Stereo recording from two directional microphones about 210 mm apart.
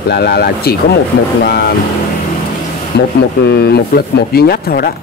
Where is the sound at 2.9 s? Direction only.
50° left (ahead or behind).